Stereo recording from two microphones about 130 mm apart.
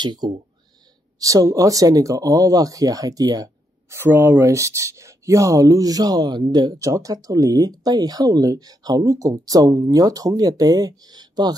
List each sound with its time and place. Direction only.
0.0 s speech: 35° right (ahead or behind)
4.0 s speech: 15° right (ahead or behind); by 11.5 s 35° right (ahead or behind)